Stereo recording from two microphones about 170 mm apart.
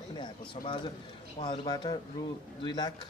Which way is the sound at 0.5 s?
30° left (ahead or behind).